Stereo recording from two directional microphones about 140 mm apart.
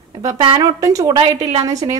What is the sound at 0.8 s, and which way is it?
Speech, 25° right (ahead or behind).